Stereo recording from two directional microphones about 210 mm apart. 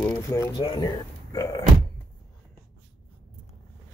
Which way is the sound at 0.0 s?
10° left (ahead or behind).